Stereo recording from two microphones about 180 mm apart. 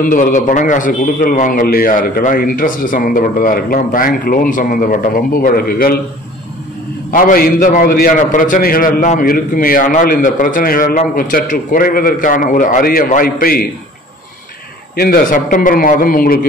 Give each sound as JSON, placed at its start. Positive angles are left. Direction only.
{"t": 0.1, "sound": "a man's voice", "side_deg": 45}
{"t": 7.1, "sound": "a man's voice", "side_deg": 50}
{"t": 15.0, "sound": "a man's voice", "side_deg": 55}